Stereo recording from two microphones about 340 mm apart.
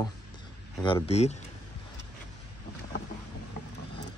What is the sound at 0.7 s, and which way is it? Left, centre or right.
Speech, centre.